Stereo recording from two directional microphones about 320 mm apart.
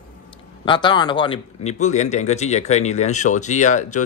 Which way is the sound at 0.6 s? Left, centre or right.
Centre.